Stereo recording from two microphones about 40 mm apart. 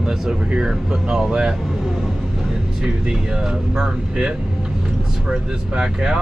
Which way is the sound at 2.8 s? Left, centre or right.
Centre.